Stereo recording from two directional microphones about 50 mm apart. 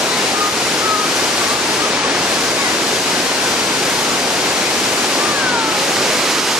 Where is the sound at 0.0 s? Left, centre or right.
Centre.